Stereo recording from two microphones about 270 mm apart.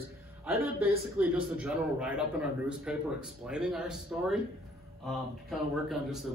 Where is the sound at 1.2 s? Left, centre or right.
Centre.